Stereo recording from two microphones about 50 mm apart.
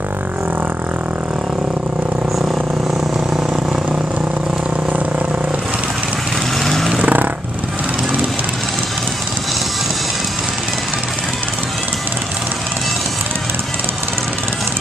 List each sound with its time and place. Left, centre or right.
6.6 s vehicle: centre
6.9 s vehicle: right